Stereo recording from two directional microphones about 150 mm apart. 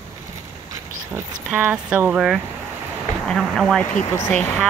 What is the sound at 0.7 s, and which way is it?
Pig, 20° right (ahead or behind).